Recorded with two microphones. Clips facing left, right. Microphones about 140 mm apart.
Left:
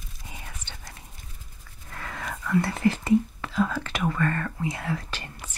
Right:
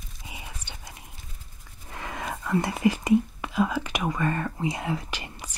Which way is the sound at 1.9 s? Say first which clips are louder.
Right 2 dB; 20° right (ahead or behind).